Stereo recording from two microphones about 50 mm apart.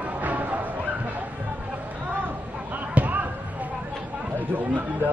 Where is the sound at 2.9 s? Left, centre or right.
Right.